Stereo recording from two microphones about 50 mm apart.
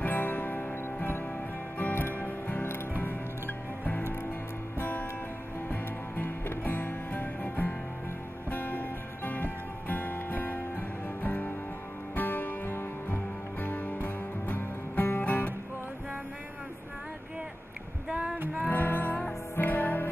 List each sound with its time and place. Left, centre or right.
0.0 s music: left
18.1 s music: right
18.6 s music: left